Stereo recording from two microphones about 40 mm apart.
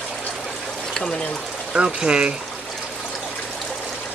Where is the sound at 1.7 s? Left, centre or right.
Right.